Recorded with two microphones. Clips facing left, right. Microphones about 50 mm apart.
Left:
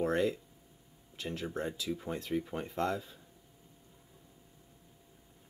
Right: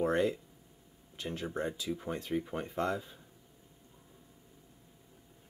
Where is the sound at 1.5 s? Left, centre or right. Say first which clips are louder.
Right 2 dB; right.